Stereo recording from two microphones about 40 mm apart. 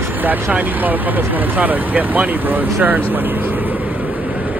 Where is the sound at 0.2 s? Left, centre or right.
Right.